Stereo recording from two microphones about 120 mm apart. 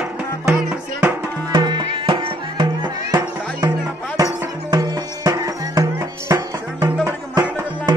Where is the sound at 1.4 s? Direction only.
35° right (ahead or behind).